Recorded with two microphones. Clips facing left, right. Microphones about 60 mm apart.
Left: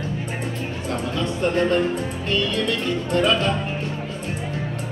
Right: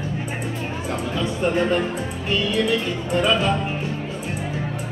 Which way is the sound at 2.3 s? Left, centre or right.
Centre.